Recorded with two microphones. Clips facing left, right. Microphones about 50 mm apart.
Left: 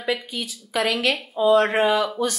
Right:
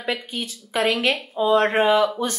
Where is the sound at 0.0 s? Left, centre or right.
Right.